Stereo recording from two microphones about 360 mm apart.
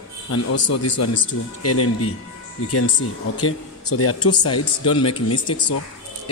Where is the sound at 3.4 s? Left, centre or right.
Left.